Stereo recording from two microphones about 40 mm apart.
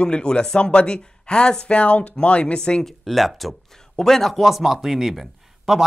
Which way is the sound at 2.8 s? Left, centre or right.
Centre.